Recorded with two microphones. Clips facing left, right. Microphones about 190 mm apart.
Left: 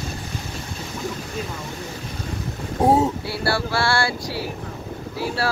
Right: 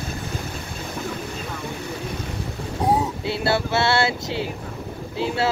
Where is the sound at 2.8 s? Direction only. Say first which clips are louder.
Left 4 dB; 25° left (ahead or behind).